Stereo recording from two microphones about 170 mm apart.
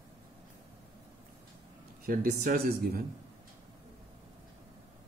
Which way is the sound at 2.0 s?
60° right (ahead or behind).